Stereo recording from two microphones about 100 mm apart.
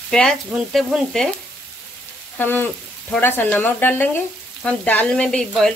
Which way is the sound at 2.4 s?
20° left (ahead or behind).